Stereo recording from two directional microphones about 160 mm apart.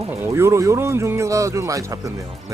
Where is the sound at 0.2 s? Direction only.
15° right (ahead or behind).